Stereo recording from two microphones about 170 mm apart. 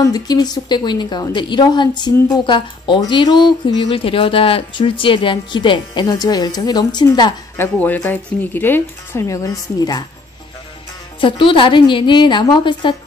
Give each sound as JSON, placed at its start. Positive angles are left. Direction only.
{"t": 0.0, "sound": "a woman's voice", "side_deg": 20}
{"t": 7.5, "sound": "speech", "side_deg": 10}
{"t": 11.1, "sound": "a woman's voice", "side_deg": 30}